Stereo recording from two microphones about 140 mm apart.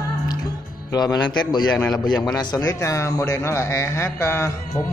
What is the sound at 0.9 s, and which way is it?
Speech, 30° left (ahead or behind).